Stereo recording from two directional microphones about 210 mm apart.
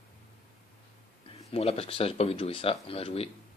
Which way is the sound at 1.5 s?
30° left (ahead or behind).